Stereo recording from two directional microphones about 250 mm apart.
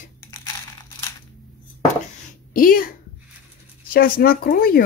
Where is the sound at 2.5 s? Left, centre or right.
Left.